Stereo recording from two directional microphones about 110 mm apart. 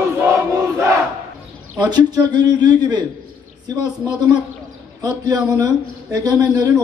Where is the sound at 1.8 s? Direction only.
40° right (ahead or behind).